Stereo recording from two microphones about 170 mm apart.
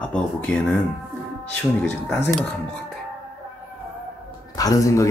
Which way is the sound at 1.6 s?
10° left (ahead or behind).